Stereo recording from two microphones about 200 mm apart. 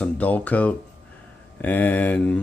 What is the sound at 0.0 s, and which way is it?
Speech, 5° left (ahead or behind).